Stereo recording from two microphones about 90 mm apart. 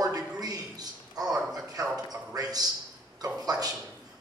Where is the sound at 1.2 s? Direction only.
5° right (ahead or behind).